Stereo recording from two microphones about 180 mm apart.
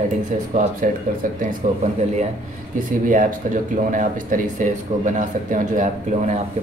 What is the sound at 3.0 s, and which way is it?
Speech, 45° right (ahead or behind).